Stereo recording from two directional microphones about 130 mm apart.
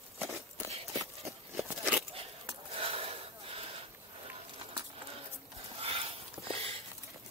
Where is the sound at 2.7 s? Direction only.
50° right (ahead or behind).